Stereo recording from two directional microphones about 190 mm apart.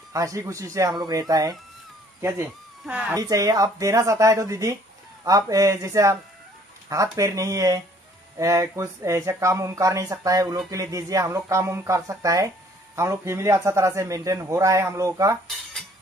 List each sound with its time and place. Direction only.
0.1 s a man's voice: 15° right (ahead or behind)
2.9 s a man's voice: 5° right (ahead or behind)
3.2 s a man's voice: 20° right (ahead or behind)